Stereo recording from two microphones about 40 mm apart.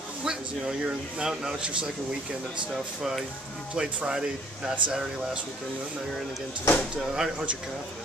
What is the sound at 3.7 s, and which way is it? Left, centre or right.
Speech, centre.